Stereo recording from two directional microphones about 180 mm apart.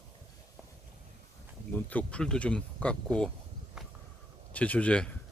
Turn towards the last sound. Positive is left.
turn(degrees=5)  # may be behind; listen again after turning